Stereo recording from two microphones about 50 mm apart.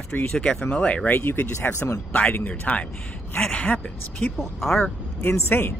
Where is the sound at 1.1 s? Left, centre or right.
Left.